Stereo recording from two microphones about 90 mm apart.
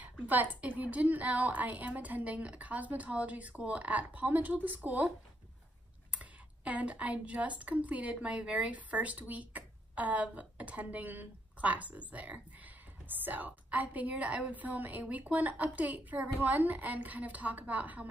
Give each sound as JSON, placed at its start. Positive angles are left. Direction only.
{"t": 0.0, "sound": "speech", "side_deg": -20}
{"t": 6.1, "sound": "speech", "side_deg": -15}